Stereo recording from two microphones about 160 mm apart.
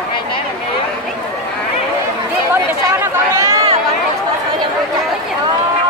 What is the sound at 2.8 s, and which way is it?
Chatter, 20° right (ahead or behind).